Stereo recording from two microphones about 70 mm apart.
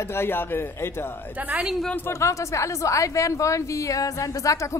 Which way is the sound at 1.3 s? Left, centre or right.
Right.